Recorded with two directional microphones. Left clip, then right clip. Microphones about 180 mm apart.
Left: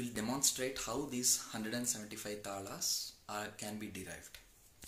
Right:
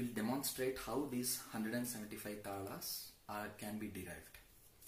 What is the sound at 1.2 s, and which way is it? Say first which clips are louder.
Speech: left 7 dB; 20° left (ahead or behind).